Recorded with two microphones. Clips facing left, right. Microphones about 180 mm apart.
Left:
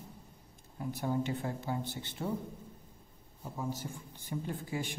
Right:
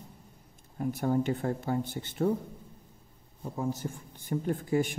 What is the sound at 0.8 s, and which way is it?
Speech, 50° right (ahead or behind).